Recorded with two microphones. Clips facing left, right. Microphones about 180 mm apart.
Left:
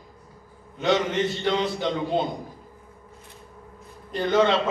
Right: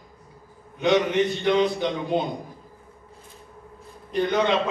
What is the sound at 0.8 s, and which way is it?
A man's voice, 15° right (ahead or behind).